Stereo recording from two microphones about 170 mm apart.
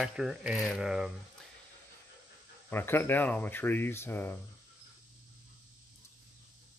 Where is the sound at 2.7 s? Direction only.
15° left (ahead or behind).